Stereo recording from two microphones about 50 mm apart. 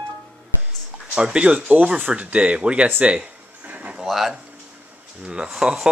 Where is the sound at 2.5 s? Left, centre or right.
Right.